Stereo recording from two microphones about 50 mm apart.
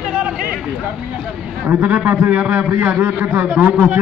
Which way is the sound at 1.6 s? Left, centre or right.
Right.